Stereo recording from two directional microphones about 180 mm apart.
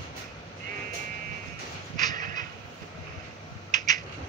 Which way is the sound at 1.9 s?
45° right (ahead or behind).